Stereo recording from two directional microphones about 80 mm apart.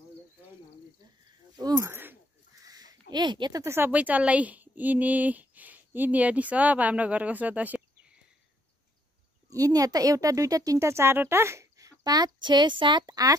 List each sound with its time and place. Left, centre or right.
1.8 s a sound: right
2.5 s a sound: right
3.6 s speech: right
3.9 s speech: centre
9.5 s speech: right
12.0 s speech: right